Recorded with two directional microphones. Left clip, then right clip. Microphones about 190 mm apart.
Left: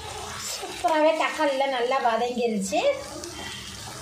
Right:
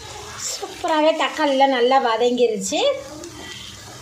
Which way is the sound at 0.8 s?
50° right (ahead or behind).